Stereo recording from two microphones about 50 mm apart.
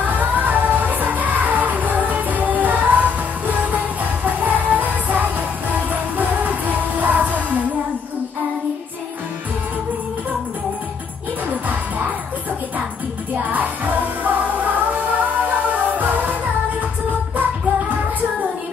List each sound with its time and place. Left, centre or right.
0.0 s music: right
13.5 s music: right
17.4 s music: right